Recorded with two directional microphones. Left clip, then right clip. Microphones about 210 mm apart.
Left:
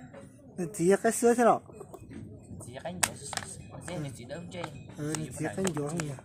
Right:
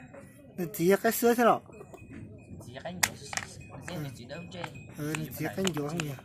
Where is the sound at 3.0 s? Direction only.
45° left (ahead or behind).